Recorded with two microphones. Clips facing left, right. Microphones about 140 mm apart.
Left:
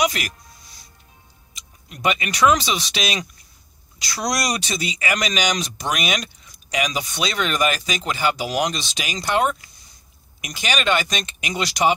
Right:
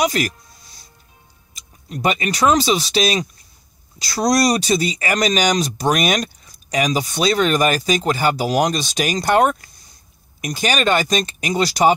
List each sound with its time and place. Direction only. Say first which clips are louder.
0.0 s speech: right 3 dB; 35° right (ahead or behind)
1.5 s speech: right 12 dB; 40° right (ahead or behind)